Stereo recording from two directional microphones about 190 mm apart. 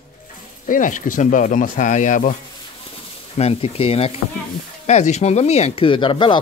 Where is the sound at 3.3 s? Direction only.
30° left (ahead or behind).